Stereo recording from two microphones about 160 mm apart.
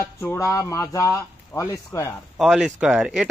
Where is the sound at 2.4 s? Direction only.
5° right (ahead or behind).